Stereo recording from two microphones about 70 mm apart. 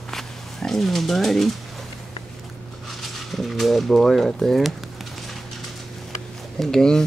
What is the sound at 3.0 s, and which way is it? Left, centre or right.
Speech, centre.